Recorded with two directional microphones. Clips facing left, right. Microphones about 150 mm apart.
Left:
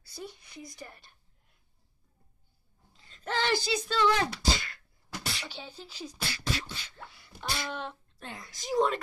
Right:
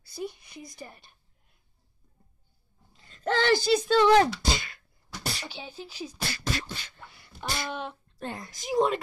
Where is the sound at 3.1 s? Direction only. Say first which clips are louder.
Right 6 dB; 55° right (ahead or behind).